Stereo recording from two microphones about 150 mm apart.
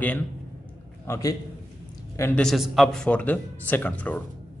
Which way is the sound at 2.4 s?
Centre (ahead or behind).